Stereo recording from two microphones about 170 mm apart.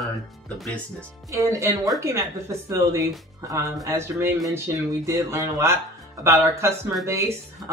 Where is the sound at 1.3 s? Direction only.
15° right (ahead or behind).